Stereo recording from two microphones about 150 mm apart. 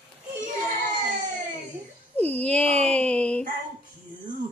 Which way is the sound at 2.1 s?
10° left (ahead or behind).